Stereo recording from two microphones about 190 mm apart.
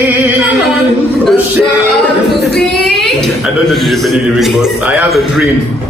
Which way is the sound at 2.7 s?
Centre (ahead or behind).